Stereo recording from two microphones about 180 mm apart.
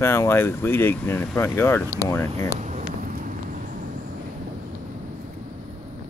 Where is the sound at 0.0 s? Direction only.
15° left (ahead or behind).